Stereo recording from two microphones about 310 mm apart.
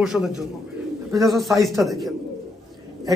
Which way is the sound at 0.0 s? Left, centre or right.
Centre.